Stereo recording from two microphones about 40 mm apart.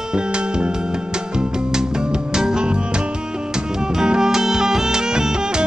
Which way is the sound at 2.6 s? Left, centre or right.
Right.